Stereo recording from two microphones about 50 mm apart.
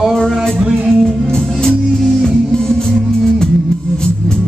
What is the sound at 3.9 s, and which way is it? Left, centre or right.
Music, centre.